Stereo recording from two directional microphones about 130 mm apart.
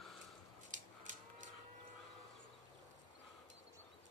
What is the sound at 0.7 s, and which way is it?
Livestock, 75° right (ahead or behind).